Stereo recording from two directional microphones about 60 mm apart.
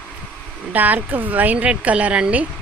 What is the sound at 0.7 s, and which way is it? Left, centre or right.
Speech, right.